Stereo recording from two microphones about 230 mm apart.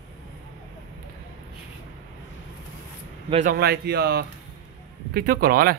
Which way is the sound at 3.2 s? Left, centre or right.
Right.